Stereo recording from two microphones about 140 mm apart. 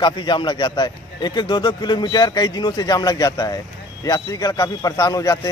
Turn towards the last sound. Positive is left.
turn(degrees=25)  # may be behind; listen again after turning